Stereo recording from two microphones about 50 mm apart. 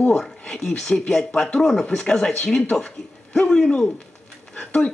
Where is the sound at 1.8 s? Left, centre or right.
Centre.